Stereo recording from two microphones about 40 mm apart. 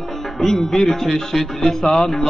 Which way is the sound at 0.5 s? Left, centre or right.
Centre.